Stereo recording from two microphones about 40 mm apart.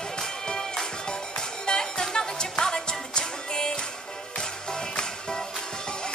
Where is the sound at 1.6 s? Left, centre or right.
Centre.